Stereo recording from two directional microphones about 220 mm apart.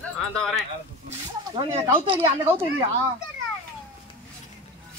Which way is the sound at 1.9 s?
25° right (ahead or behind).